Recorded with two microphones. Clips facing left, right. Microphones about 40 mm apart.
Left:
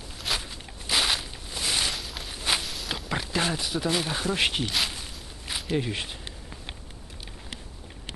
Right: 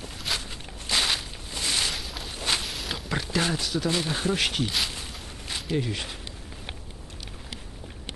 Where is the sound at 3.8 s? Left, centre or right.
Centre.